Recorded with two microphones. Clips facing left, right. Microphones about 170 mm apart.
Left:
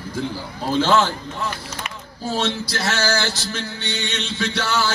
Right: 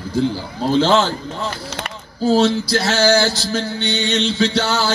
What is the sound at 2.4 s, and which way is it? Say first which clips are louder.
Music: right 5 dB; 30° right (ahead or behind).